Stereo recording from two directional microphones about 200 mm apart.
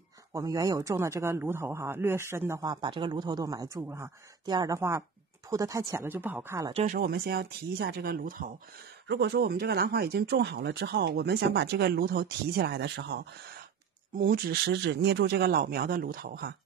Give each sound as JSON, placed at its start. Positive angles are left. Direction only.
{"t": 0.3, "sound": "a man's voice", "side_deg": -15}
{"t": 6.7, "sound": "speech", "side_deg": -35}
{"t": 7.0, "sound": "speech", "side_deg": -50}
{"t": 9.0, "sound": "speech", "side_deg": -60}